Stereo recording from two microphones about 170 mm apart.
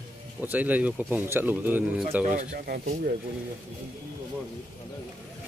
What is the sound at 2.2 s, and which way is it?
Speech, 50° right (ahead or behind).